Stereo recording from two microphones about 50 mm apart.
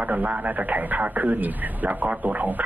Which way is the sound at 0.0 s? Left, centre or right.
Right.